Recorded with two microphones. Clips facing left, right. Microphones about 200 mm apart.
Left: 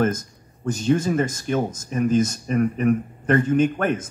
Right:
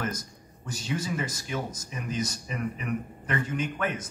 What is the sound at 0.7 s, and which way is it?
Speech, 50° left (ahead or behind).